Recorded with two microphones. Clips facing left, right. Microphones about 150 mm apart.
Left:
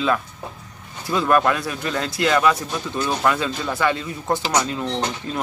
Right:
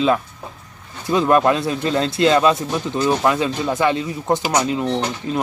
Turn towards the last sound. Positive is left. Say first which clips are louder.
# right 3 dB
turn(degrees=-20)  # may be behind; listen again after turning